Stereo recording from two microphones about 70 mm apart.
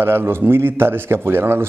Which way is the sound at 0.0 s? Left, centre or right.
Right.